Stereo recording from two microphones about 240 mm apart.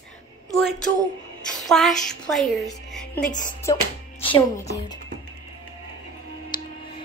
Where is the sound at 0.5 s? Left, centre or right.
Centre.